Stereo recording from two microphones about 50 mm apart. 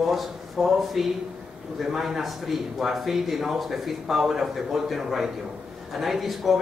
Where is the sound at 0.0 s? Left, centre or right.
Centre.